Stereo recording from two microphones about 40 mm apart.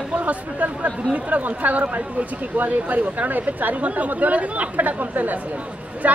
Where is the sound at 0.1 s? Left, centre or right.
Right.